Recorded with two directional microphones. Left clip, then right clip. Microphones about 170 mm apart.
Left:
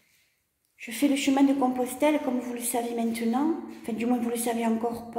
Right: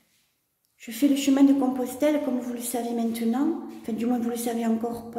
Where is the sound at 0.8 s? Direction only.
20° right (ahead or behind).